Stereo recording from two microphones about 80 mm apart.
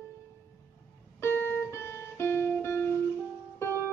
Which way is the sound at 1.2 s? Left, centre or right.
Left.